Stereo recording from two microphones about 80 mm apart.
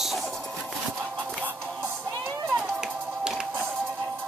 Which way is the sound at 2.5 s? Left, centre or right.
Centre.